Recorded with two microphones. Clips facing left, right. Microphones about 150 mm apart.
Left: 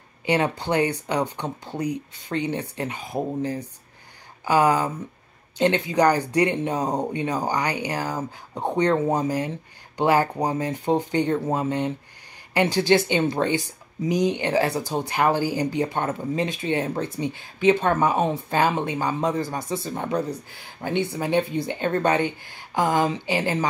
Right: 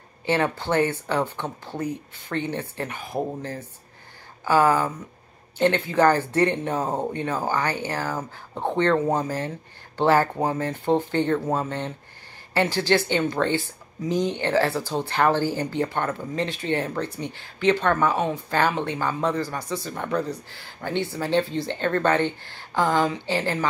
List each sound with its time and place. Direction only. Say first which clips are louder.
0.2 s speech: left 1 dB; 15° left (ahead or behind)
4.5 s speech: even; 15° left (ahead or behind)